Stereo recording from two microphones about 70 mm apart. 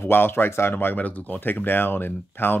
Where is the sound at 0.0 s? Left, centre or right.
Left.